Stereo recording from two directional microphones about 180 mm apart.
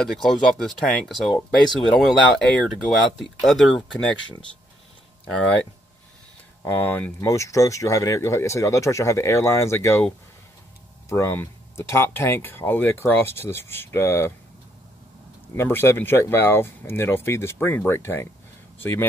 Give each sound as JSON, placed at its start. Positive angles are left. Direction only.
{"t": 0.0, "sound": "speech", "side_deg": 0}
{"t": 6.6, "sound": "speech", "side_deg": 10}
{"t": 15.5, "sound": "speech", "side_deg": 10}